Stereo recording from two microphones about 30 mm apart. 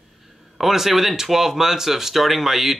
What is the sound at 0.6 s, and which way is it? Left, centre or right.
Speech, centre.